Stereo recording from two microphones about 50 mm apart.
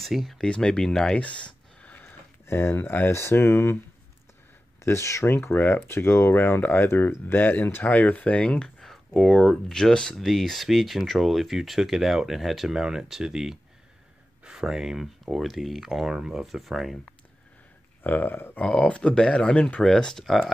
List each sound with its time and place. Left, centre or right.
0.0 s speech: centre
0.4 s speech: centre
1.1 s a sound: left
2.4 s speech: left
3.1 s speech: left
4.7 s speech: left
5.2 s speech: left
5.9 s speech: left
7.3 s speech: left; by 8.9 s centre
8.9 s speech: centre
18.0 s speech: left
18.6 s speech: left
19.8 s speech: centre